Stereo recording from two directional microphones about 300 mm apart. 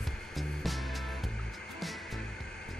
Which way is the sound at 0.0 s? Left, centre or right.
Centre.